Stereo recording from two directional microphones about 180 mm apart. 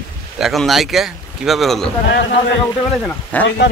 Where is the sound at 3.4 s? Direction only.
75° left (ahead or behind).